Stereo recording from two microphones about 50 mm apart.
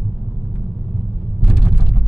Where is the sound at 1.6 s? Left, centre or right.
Centre.